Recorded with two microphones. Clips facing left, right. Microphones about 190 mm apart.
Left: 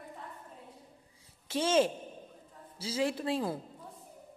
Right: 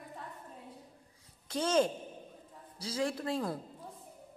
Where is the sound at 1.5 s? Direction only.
5° left (ahead or behind).